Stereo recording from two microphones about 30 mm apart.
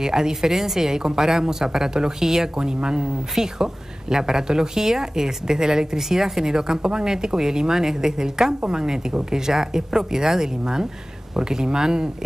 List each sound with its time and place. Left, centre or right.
0.0 s a woman's voice: right
3.3 s a woman's voice: centre